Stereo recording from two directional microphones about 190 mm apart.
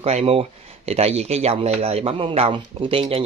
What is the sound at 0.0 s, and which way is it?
Speech, 30° right (ahead or behind).